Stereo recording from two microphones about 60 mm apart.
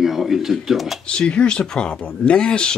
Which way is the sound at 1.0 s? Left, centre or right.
Centre.